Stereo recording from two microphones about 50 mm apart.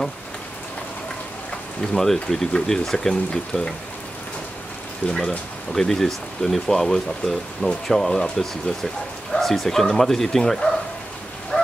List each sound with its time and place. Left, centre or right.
1.8 s speech: centre
5.0 s speech: left
5.7 s speech: centre
11.5 s fowl: centre